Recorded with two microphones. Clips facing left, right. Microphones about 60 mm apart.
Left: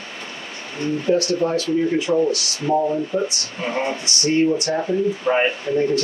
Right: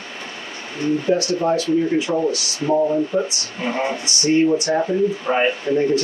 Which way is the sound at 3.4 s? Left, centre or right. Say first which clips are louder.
Right 1 dB; right.